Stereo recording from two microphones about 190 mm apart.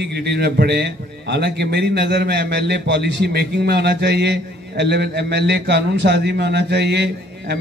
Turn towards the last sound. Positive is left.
turn(degrees=-60)  # may be behind; listen again after turning